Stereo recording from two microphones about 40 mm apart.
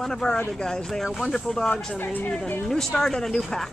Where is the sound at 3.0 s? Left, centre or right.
Centre.